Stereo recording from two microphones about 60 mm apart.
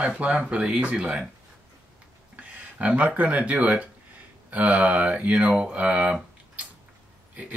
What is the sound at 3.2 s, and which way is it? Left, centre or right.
Speech, right.